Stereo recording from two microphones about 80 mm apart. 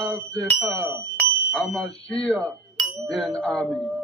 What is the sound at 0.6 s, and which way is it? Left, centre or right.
Speech, right.